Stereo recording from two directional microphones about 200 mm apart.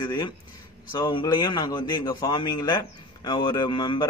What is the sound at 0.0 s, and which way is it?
A man's voice, 20° left (ahead or behind).